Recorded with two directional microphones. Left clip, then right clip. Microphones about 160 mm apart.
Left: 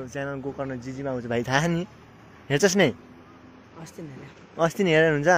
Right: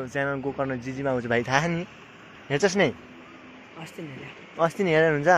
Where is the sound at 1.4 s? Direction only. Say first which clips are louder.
Even; 45° left (ahead or behind).